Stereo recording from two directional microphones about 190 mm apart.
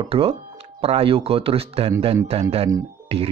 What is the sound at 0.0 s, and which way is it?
Speech, 30° right (ahead or behind).